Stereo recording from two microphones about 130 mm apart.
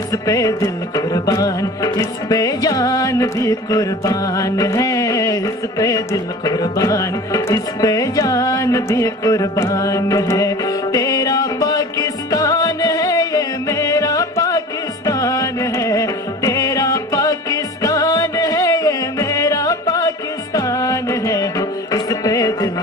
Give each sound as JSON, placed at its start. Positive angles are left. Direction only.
{"t": 0.1, "sound": "music", "side_deg": 25}